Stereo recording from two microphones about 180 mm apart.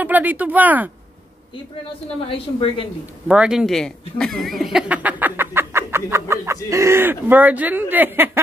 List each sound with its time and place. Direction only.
0.0 s speech: 10° right (ahead or behind)
2.2 s a woman's voice: 30° left (ahead or behind)
3.3 s speech: 5° right (ahead or behind)